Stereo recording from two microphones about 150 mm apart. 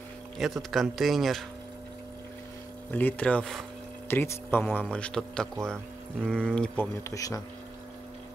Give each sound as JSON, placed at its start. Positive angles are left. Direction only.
{"t": 0.4, "sound": "a man's voice", "side_deg": 0}
{"t": 2.9, "sound": "a man's voice", "side_deg": 10}
{"t": 7.0, "sound": "speech", "side_deg": 20}